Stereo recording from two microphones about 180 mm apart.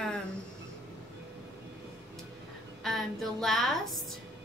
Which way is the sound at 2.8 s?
Centre (ahead or behind).